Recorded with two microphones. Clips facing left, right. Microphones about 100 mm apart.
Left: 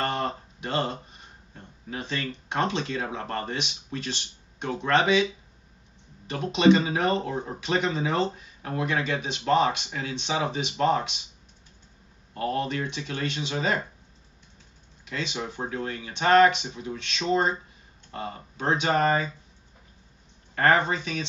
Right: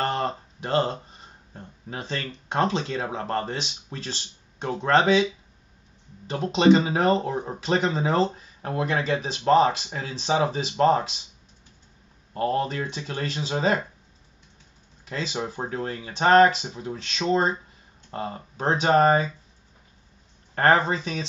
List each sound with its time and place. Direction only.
0.0 s a sound: 35° right (ahead or behind)
1.9 s speech: 35° right (ahead or behind)
12.4 s speech: 35° right (ahead or behind)
15.0 s speech: 35° right (ahead or behind)
20.5 s speech: 35° right (ahead or behind)